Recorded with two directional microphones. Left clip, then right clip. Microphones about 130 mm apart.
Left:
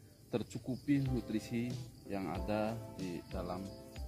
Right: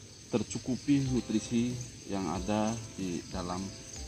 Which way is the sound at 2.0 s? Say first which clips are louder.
Right 5 dB; 25° left (ahead or behind).